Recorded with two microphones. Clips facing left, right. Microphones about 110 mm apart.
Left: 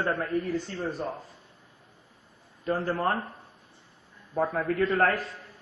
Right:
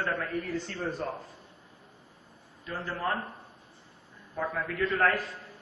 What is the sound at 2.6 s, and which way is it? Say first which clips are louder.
Speech: left 7 dB; 45° left (ahead or behind).